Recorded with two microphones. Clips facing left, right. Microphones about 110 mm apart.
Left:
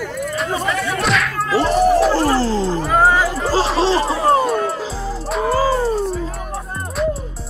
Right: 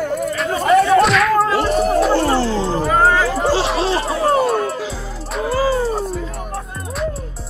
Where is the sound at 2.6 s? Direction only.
Centre (ahead or behind).